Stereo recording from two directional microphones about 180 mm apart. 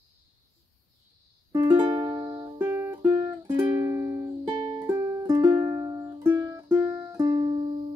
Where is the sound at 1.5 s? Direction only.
20° right (ahead or behind).